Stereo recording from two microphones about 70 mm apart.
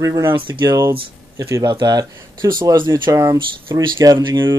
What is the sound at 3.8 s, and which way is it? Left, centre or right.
Speech, right.